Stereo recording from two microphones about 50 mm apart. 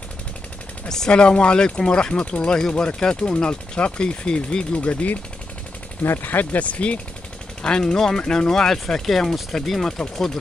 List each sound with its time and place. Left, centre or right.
0.8 s speech: centre
6.2 s speech: left
7.6 s speech: centre